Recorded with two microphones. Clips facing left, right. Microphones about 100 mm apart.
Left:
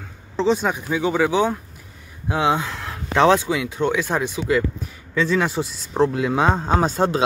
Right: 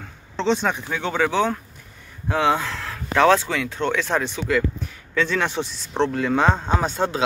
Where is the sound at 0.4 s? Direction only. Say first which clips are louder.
Left 2 dB; 5° left (ahead or behind).